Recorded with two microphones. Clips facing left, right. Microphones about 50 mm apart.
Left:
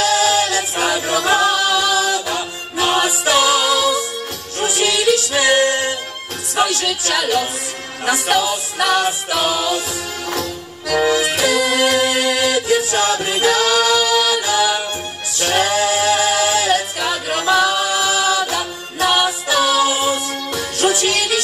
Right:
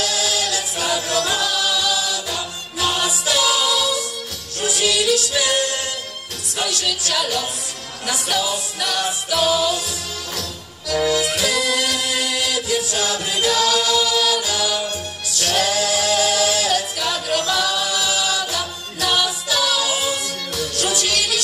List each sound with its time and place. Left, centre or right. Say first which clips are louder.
0.0 s a capella: left 7 dB; left
4.6 s music: left 2 dB; left
10.9 s music: left 3 dB; left